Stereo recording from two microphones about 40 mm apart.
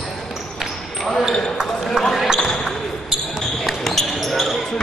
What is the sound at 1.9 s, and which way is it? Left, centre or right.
Basketball bounce, centre.